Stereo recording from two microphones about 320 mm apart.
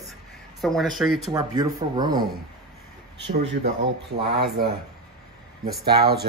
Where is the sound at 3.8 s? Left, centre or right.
Right.